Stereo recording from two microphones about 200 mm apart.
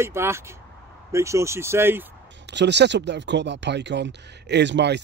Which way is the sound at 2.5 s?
60° right (ahead or behind).